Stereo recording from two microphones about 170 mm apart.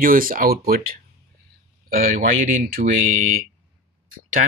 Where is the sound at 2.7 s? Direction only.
50° right (ahead or behind).